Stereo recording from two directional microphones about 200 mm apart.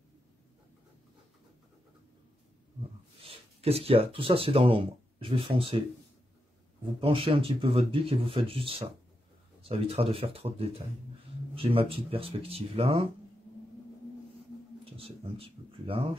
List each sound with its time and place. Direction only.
3.2 s speech: 30° right (ahead or behind)
7.0 s speech: 25° right (ahead or behind)
15.0 s speech: 30° right (ahead or behind)